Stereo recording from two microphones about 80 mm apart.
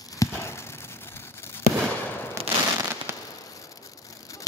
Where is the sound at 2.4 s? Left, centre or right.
Right.